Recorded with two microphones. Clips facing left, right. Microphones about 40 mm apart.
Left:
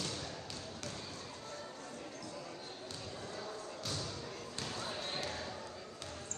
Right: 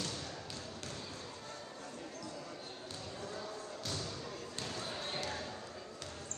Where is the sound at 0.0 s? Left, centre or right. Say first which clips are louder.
Even; left.